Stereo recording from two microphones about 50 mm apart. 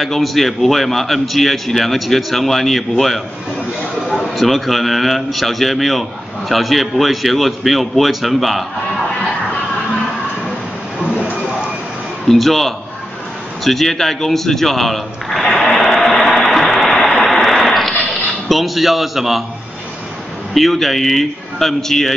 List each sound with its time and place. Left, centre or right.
0.0 s a man's voice: centre
11.0 s vehicle: centre
12.3 s a man's voice: centre
15.7 s a sound: centre
20.5 s a man's voice: centre